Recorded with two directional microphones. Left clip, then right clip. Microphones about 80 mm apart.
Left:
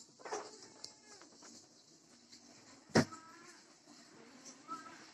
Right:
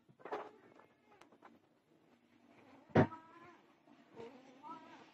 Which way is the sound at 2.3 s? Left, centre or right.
Right.